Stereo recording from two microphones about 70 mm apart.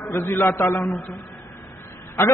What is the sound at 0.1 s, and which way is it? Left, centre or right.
Speech, left.